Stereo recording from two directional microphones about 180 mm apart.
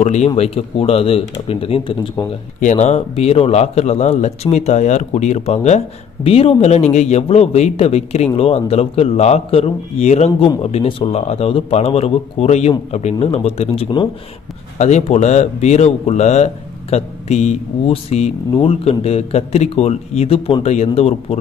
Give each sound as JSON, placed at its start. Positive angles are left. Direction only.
{"t": 0.0, "sound": "speech", "side_deg": 40}